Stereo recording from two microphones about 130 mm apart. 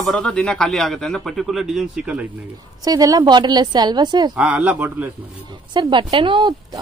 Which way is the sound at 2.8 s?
30° right (ahead or behind).